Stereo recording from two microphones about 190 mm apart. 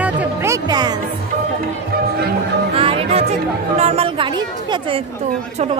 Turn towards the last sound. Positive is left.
turn(degrees=-25)  # may be behind; listen again after turning